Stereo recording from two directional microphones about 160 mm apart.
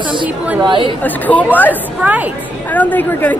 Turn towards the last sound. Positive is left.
turn(degrees=10)  # may be behind; listen again after turning